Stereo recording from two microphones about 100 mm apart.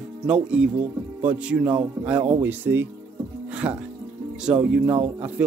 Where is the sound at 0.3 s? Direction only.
10° right (ahead or behind).